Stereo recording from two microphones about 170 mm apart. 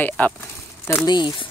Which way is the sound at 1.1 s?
25° left (ahead or behind).